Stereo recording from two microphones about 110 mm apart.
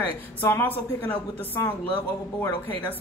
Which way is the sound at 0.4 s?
20° left (ahead or behind).